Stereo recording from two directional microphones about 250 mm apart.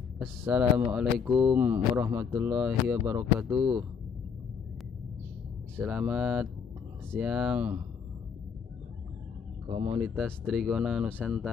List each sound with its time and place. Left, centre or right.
0.2 s speech: centre
5.8 s speech: centre
9.7 s speech: right
9.9 s speech: centre